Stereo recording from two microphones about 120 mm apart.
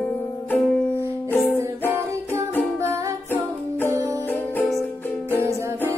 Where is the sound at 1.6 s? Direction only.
20° right (ahead or behind).